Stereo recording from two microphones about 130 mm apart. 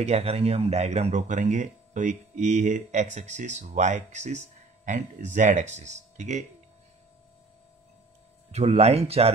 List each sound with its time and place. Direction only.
0.0 s speech: 50° right (ahead or behind)
8.5 s speech: 55° right (ahead or behind)